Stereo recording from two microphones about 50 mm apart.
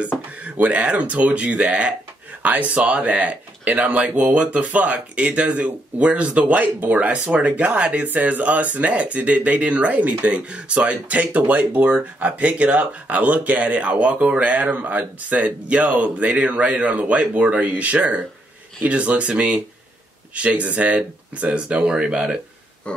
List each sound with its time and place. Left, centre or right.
0.4 s speech: right
2.4 s speech: right; by 22.4 s centre
22.8 s grunt: left